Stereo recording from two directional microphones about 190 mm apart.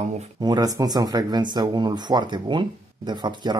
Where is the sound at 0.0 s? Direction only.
35° right (ahead or behind).